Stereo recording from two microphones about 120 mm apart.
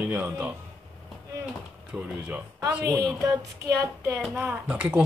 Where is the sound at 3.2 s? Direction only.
25° right (ahead or behind).